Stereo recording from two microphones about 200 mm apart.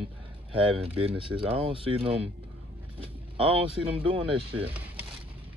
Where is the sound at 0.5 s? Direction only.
30° right (ahead or behind).